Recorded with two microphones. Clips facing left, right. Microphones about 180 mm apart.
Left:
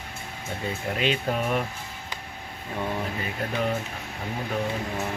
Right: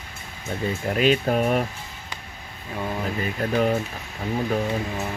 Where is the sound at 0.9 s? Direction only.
35° right (ahead or behind).